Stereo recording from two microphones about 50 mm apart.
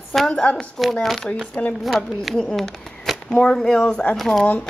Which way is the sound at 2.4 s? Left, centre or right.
Centre.